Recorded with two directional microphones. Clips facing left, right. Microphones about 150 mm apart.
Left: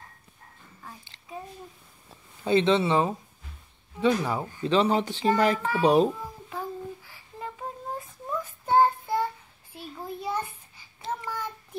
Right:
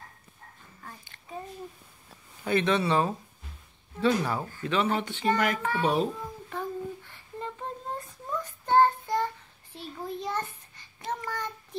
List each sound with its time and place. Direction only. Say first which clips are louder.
2.4 s speech: left 4 dB; 25° left (ahead or behind)
4.9 s a child's voice: left 3 dB; 35° left (ahead or behind)
6.5 s child singing: right 1 dB; 5° left (ahead or behind)